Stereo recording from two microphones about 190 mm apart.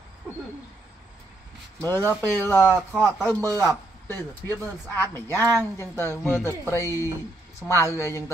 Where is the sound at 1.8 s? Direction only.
10° left (ahead or behind).